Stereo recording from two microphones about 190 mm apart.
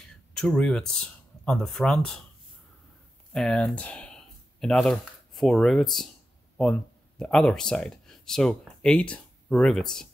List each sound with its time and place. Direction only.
0.3 s speech: 5° left (ahead or behind)
3.3 s speech: 5° left (ahead or behind)